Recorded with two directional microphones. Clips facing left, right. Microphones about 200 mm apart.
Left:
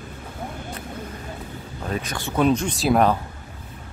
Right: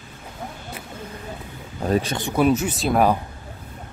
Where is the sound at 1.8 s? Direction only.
35° right (ahead or behind).